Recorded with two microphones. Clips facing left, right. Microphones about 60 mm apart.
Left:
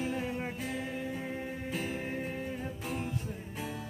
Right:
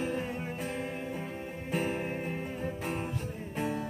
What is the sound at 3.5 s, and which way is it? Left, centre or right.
Music, right.